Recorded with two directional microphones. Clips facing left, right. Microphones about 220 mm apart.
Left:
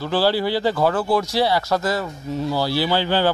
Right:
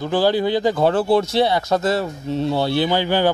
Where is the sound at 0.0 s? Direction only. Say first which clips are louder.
Right 2 dB; 15° right (ahead or behind).